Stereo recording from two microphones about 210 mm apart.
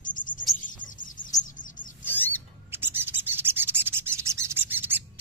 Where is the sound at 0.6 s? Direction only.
40° left (ahead or behind).